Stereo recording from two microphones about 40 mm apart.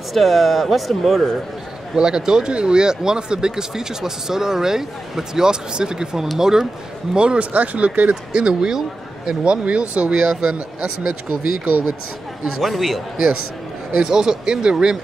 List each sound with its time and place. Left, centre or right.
0.1 s speech: centre
2.0 s speech: centre
7.2 s speech: right
7.5 s speech: right
8.1 s speech: right
12.4 s speech: centre
13.9 s speech: centre